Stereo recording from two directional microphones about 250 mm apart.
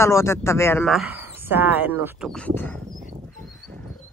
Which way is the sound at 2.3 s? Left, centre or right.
Centre.